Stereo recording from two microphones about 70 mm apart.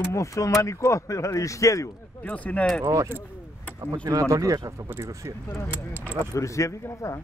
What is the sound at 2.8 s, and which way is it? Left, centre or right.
Speech, right.